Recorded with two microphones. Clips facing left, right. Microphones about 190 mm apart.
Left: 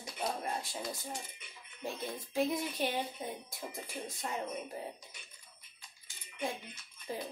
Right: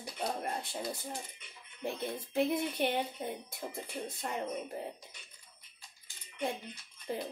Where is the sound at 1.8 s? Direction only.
60° right (ahead or behind).